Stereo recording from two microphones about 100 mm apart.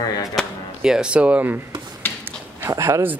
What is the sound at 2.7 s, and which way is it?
Speech, 35° right (ahead or behind).